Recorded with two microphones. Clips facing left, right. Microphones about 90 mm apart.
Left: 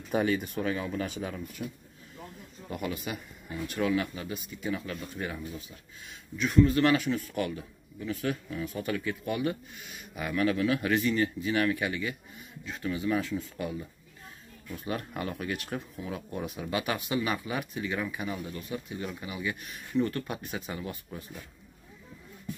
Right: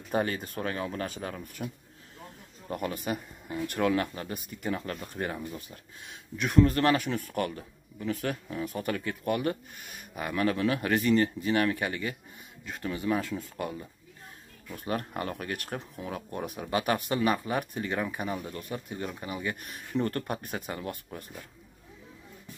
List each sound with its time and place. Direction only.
0.1 s speech: 50° right (ahead or behind)
1.0 s speech: 45° right (ahead or behind)
2.7 s speech: 45° right (ahead or behind)
14.8 s speech: 45° right (ahead or behind)